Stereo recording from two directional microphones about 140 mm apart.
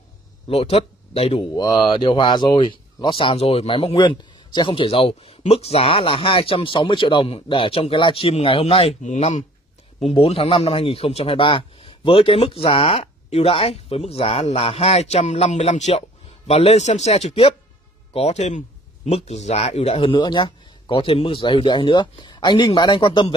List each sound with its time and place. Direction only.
0.5 s speech: 45° left (ahead or behind)
1.5 s speech: 30° left (ahead or behind)
9.0 s speech: 55° left (ahead or behind)
10.1 s a man's voice: 45° left (ahead or behind)